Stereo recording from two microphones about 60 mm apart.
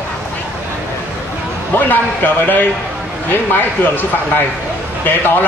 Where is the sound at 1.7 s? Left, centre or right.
Left.